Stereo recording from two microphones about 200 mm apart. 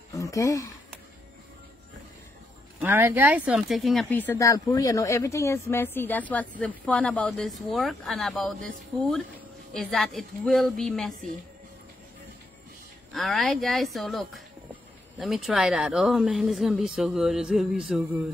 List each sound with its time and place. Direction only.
0.1 s speech: 15° left (ahead or behind)
2.8 s speech: 10° right (ahead or behind)
13.1 s speech: centre (ahead or behind)